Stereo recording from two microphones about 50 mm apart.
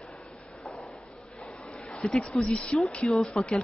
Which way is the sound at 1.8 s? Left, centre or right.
Centre.